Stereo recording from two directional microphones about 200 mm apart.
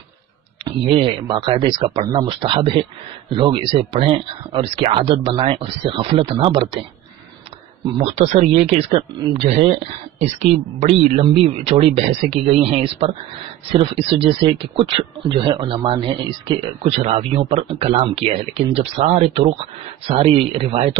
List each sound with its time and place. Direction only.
0.7 s speech: 25° right (ahead or behind)
8.0 s speech: 35° right (ahead or behind)